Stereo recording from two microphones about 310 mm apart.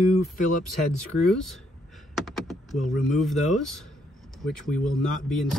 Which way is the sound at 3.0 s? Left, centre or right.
Centre.